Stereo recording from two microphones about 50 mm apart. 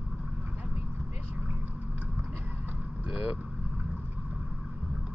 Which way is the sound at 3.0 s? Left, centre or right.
Right.